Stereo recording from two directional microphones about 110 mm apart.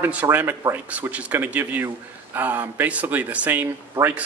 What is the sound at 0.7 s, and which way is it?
A man's voice, 15° right (ahead or behind).